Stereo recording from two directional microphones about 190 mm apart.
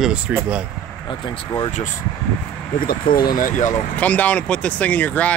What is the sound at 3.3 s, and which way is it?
Speech, 45° left (ahead or behind).